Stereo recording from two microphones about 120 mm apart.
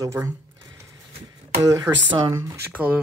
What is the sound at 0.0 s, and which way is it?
Speech, 30° right (ahead or behind).